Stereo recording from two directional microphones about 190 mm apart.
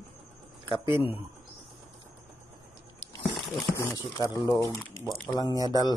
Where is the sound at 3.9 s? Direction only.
15° left (ahead or behind).